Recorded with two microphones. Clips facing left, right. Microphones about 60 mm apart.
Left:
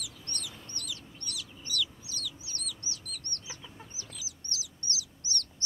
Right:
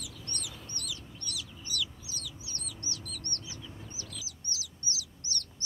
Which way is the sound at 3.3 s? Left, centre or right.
Left.